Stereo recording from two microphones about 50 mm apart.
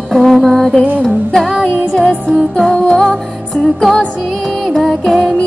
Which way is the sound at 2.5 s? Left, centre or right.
Centre.